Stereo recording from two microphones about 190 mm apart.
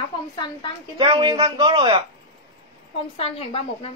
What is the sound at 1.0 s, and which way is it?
A man's voice, 25° right (ahead or behind).